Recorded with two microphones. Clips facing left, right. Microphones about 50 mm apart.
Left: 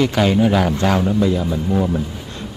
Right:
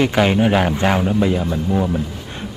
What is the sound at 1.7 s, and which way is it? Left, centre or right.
Speech, centre.